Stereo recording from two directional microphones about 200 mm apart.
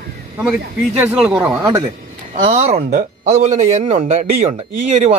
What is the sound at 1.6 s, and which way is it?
Speech, 15° right (ahead or behind).